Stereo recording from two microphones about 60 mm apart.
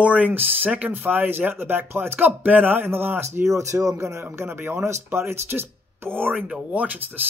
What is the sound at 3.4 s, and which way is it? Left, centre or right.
Speech, right.